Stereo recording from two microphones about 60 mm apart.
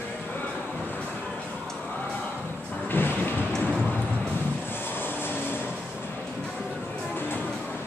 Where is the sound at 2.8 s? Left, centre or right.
Left.